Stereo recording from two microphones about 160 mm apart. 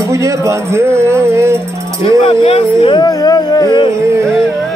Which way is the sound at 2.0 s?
35° left (ahead or behind).